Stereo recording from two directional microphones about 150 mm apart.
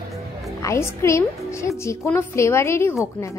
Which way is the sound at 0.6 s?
20° left (ahead or behind).